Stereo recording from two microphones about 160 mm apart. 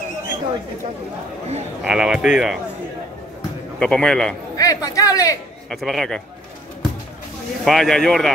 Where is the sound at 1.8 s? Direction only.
5° right (ahead or behind).